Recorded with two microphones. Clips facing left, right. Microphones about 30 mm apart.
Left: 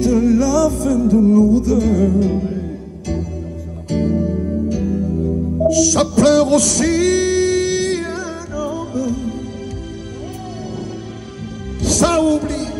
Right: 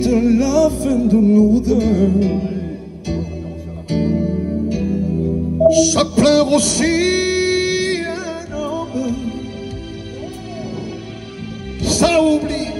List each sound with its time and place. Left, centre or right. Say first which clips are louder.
0.0 s music: even; right
11.8 s music: right 1 dB; right